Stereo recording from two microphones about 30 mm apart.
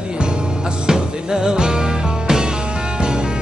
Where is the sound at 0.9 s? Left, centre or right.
Right.